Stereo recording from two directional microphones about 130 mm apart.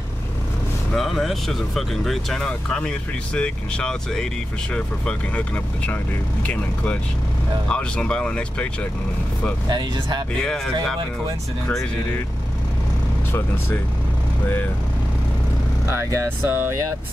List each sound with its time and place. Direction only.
0.9 s speech: centre (ahead or behind)
6.4 s speech: 10° left (ahead or behind)
9.7 s speech: 35° right (ahead or behind)
10.4 s speech: 5° left (ahead or behind)
15.9 s speech: 20° right (ahead or behind)